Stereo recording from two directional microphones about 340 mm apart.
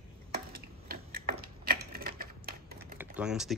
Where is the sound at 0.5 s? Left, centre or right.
Right.